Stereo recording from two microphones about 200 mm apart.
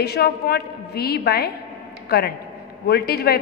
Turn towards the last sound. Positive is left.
turn(degrees=50)  # may be behind; listen again after turning